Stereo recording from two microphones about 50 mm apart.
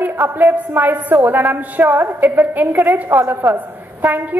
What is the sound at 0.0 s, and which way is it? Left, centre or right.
A woman's voice, right.